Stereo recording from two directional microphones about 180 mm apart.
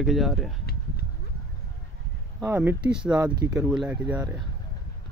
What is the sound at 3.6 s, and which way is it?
Speech, 5° right (ahead or behind).